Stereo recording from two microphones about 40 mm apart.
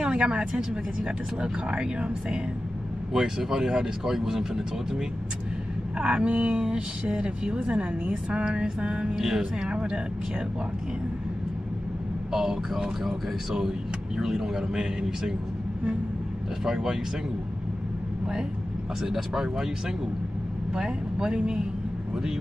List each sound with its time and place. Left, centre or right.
0.0 s a woman's voice: right
5.9 s a woman's voice: right
12.3 s speech: centre
16.6 s speech: centre
19.3 s speech: centre
20.7 s a woman's voice: centre